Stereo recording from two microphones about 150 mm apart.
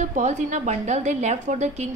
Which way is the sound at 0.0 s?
55° right (ahead or behind).